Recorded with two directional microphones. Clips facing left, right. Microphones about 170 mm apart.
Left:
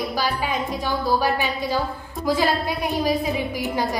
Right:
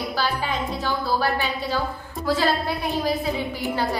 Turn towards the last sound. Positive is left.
turn(degrees=15)  # may be behind; listen again after turning